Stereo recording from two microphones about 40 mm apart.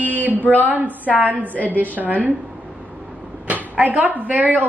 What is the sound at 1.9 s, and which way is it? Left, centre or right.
Speech, right.